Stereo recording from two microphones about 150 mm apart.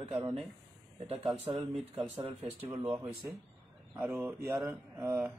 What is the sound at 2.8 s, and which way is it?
Speech, 10° right (ahead or behind).